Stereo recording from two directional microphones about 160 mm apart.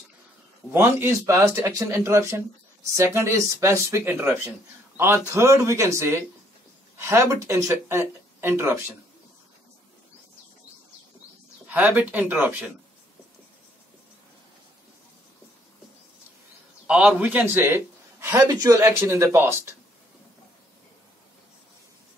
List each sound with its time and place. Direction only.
0.7 s a man's voice: 15° right (ahead or behind)
11.6 s a man's voice: 10° right (ahead or behind)
16.8 s a man's voice: 5° right (ahead or behind)